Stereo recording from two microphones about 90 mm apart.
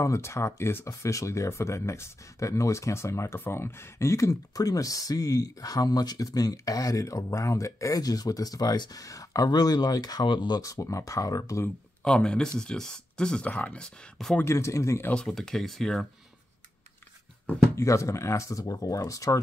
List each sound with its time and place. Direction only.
0.0 s speech: 35° left (ahead or behind); by 9.0 s 50° left (ahead or behind)
9.0 s speech: 40° left (ahead or behind); by 10.6 s 60° left (ahead or behind)
10.6 s speech: 35° left (ahead or behind)
12.0 s speech: 10° left (ahead or behind)
14.4 s speech: 30° left (ahead or behind)
15.1 s speech: 5° left (ahead or behind)
17.7 s speech: 35° left (ahead or behind)